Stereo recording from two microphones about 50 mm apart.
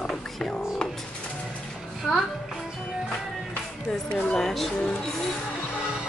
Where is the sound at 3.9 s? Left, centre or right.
Left.